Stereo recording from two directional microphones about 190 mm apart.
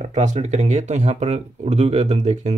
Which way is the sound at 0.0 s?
40° right (ahead or behind).